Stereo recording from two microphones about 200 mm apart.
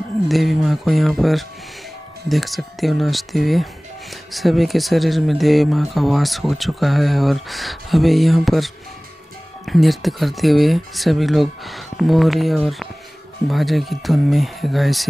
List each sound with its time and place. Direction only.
0.3 s speech: centre (ahead or behind)